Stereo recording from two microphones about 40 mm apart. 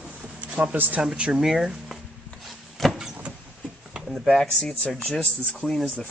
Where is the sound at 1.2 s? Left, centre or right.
Centre.